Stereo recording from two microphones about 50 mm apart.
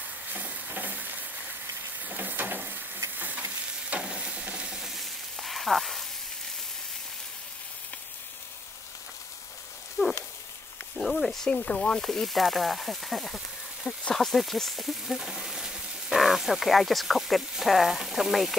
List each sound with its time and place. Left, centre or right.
0.3 s stir: right
2.0 s a sound: right
3.2 s frying: right
3.9 s frying: right; by 6.0 s centre
10.0 s a sound: left
11.0 s speech: centre
11.5 s sizzle: left
12.0 s speech: centre